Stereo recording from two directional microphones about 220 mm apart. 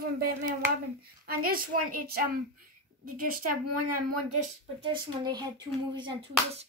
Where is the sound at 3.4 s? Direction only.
90° right.